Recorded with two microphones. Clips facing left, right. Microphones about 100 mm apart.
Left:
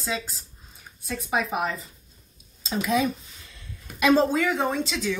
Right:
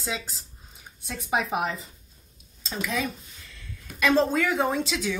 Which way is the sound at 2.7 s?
20° left (ahead or behind).